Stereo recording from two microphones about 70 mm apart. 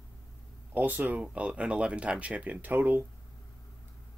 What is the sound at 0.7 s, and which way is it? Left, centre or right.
Speech, right.